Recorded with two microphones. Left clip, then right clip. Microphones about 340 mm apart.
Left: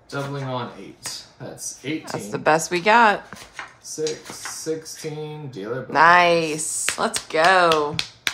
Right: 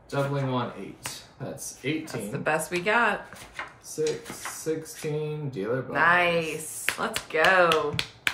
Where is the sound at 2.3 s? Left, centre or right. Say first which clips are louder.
Left 8 dB; centre.